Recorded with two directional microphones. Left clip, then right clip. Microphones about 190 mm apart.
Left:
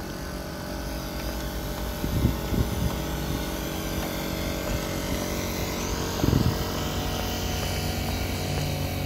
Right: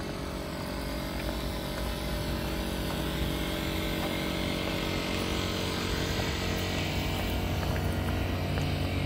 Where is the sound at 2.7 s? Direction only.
45° left (ahead or behind).